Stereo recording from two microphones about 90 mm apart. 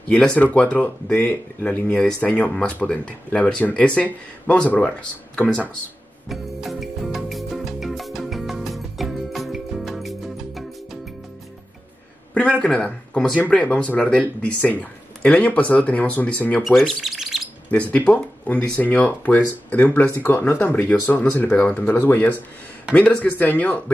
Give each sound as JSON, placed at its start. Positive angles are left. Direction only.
{"t": 0.1, "sound": "speech", "side_deg": 15}
{"t": 6.2, "sound": "music", "side_deg": 0}
{"t": 12.4, "sound": "speech", "side_deg": 10}
{"t": 16.6, "sound": "speech", "side_deg": 0}
{"t": 17.6, "sound": "speech", "side_deg": 15}